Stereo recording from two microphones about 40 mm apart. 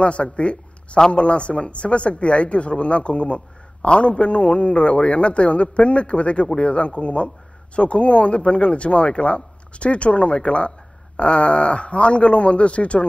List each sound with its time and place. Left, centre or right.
0.0 s speech: left